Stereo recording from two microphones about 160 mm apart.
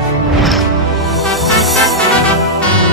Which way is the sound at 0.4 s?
Centre (ahead or behind).